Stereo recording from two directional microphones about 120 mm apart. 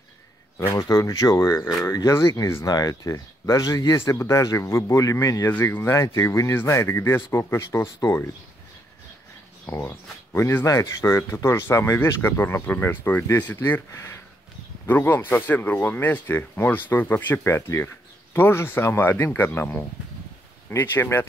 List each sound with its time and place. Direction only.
0.6 s speech: 30° left (ahead or behind)
5.5 s speech: 15° left (ahead or behind)
9.7 s speech: 25° left (ahead or behind)